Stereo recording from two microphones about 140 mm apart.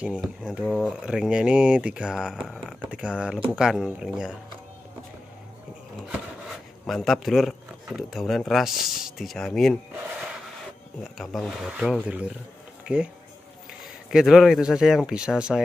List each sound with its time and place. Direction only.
0.0 s speech: 5° right (ahead or behind)
6.9 s speech: centre (ahead or behind)
11.1 s speech: centre (ahead or behind)
14.1 s speech: centre (ahead or behind)